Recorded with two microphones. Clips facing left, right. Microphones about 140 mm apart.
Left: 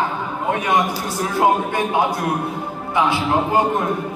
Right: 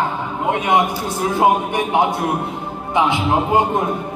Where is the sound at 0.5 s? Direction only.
20° right (ahead or behind).